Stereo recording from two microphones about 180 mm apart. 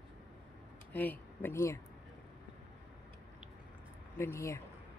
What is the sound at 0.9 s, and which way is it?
Speech, 10° left (ahead or behind).